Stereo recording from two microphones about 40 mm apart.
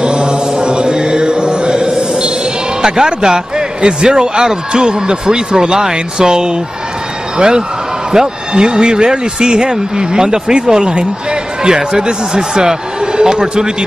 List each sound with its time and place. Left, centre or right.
0.0 s chant: right
2.8 s a man's voice: centre